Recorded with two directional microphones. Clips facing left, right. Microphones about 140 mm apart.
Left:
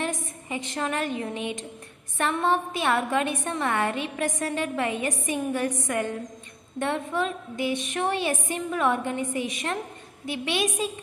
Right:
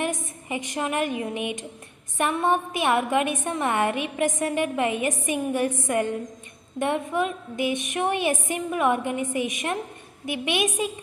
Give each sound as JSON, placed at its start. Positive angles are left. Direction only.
{"t": 0.0, "sound": "a woman's voice", "side_deg": -15}